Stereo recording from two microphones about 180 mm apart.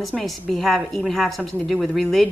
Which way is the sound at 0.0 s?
Centre (ahead or behind).